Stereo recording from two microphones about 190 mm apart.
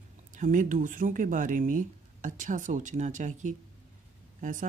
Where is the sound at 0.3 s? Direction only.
45° right (ahead or behind).